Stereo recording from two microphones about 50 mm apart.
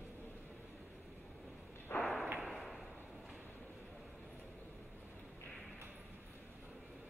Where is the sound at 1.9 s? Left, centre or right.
Left.